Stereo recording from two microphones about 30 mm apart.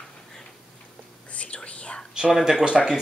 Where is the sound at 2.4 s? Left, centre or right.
Right.